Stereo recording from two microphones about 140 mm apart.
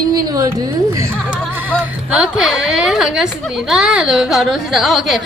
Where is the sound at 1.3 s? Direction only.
10° right (ahead or behind).